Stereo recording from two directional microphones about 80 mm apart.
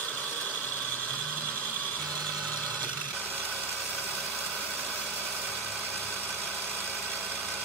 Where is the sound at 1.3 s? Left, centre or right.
Centre.